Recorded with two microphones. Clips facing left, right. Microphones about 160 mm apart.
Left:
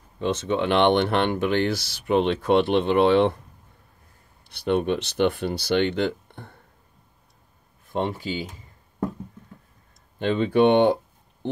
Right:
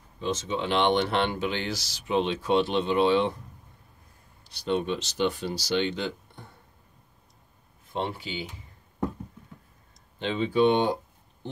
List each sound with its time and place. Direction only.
0.2 s speech: 60° left (ahead or behind)
4.5 s speech: 60° left (ahead or behind)
7.9 s speech: 45° left (ahead or behind)
10.1 s speech: 55° left (ahead or behind)